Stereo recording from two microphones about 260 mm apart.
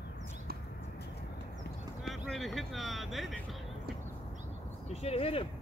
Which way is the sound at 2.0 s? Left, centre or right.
Centre.